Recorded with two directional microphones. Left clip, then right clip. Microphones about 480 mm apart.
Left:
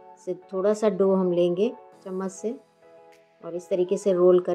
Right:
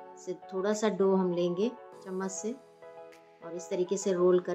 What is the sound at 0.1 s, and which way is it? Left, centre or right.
Speech, centre.